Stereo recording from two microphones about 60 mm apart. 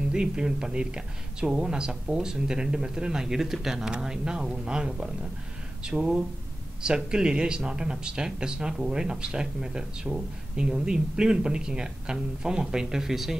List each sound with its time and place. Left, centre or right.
0.1 s speech: centre